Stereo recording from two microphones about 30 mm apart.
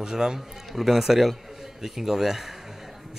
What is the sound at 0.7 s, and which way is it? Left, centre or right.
A man's voice, centre.